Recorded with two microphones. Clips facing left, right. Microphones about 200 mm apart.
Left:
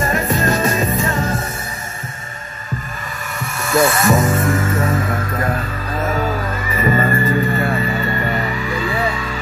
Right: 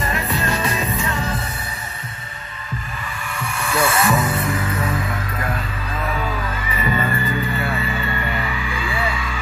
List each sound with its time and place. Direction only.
0.0 s music: 45° left (ahead or behind)
3.3 s music: 40° left (ahead or behind)